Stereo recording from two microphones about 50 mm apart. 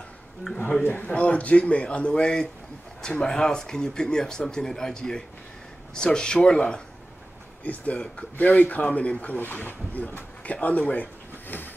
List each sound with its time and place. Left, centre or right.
0.8 s speech: left; by 6.8 s centre
7.6 s speech: left
9.4 s speech: left